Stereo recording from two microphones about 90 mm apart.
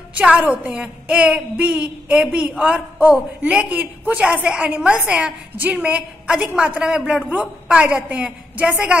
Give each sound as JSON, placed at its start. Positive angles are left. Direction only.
{"t": 0.1, "sound": "a woman's voice", "side_deg": -15}